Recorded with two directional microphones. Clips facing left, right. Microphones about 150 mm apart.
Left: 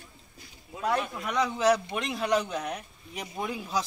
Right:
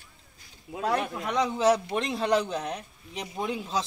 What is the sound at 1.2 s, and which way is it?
A man's voice, 25° right (ahead or behind).